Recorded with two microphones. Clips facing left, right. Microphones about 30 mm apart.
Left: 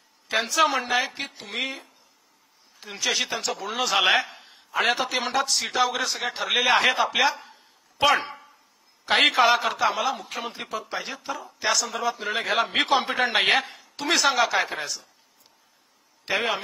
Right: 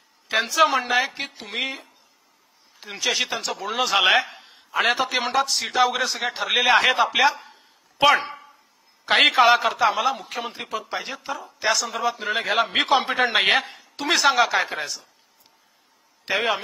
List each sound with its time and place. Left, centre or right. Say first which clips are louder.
0.3 s a man's voice: right 3 dB; centre
8.0 s a sound: right 3 dB; centre
9.0 s a man's voice: right 3 dB; centre
16.3 s a man's voice: right 2 dB; centre